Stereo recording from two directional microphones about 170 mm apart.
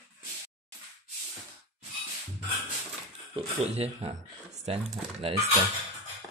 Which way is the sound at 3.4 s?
35° right (ahead or behind).